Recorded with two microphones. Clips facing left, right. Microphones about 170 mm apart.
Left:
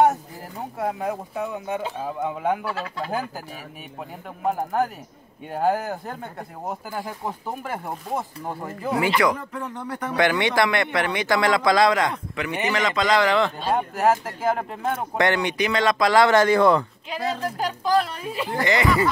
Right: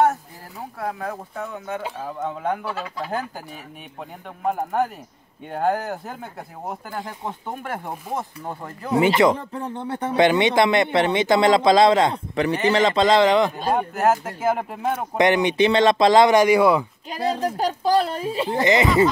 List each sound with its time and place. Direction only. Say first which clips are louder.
0.0 s a sound: left 1 dB; 20° left (ahead or behind)
2.0 s speech: left 1 dB; 10° left (ahead or behind)
4.5 s speech: right 1 dB; centre (ahead or behind)
8.9 s speech: right 5 dB; 25° right (ahead or behind)
13.7 s speech: right 1 dB; centre (ahead or behind)
15.1 s speech: right 5 dB; 20° right (ahead or behind)
17.1 s speech: right 3 dB; 35° right (ahead or behind)